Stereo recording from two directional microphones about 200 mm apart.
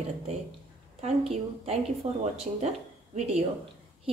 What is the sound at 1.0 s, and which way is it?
A woman's voice, 35° right (ahead or behind).